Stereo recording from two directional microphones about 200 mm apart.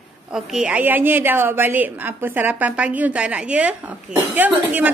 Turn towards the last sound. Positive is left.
turn(degrees=-10)  # may be behind; listen again after turning